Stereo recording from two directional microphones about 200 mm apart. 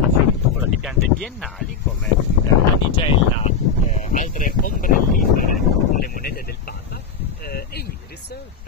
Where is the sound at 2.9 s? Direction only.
25° left (ahead or behind).